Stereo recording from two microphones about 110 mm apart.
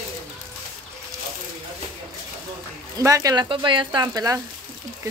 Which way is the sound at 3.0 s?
30° right (ahead or behind).